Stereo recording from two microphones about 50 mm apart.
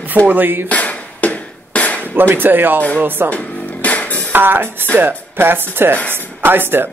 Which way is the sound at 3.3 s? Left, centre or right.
Left.